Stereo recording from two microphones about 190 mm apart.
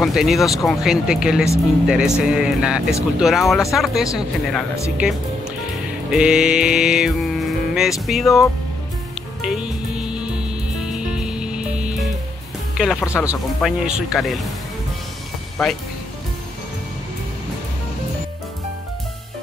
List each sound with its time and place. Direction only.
0.0 s speech: centre (ahead or behind)
6.1 s music: 5° right (ahead or behind)
8.1 s speech: centre (ahead or behind)
9.4 s music: 5° right (ahead or behind)
12.7 s speech: centre (ahead or behind)
13.0 s speech: 15° left (ahead or behind)
13.3 s speech: 5° right (ahead or behind)
15.6 s speech: centre (ahead or behind)